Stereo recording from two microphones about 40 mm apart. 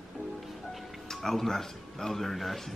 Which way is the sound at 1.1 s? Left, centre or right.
Centre.